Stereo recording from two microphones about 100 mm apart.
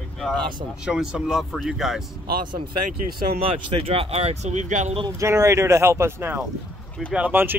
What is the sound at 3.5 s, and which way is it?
Speech, 65° right (ahead or behind).